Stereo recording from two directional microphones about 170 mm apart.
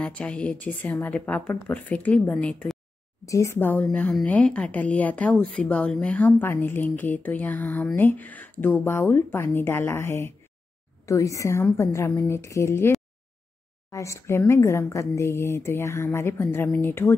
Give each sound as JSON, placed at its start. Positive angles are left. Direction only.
{"t": 0.0, "sound": "a woman's voice", "side_deg": 5}